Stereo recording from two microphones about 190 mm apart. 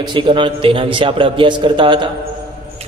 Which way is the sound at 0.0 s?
25° right (ahead or behind).